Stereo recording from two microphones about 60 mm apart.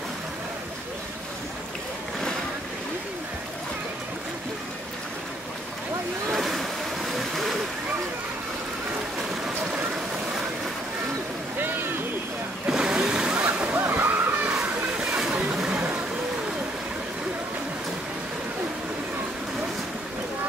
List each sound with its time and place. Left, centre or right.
6.3 s a sound: centre
12.6 s vehicle: centre
13.4 s waves: right
13.8 s slosh: right
14.6 s water: centre
15.5 s vehicle: centre